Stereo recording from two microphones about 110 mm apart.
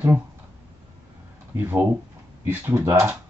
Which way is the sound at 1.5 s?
20° right (ahead or behind).